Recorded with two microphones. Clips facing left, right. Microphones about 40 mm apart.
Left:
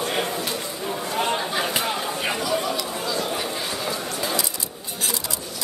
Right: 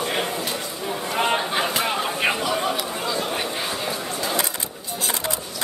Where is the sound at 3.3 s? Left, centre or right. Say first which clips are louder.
Right 1 dB; right.